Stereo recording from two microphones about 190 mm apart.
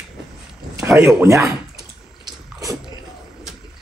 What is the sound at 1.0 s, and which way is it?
Chewing, 15° right (ahead or behind).